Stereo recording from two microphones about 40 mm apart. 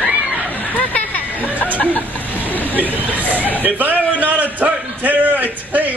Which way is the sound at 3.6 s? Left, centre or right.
Right.